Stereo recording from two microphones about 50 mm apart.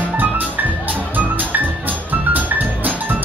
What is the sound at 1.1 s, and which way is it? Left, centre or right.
Music, right.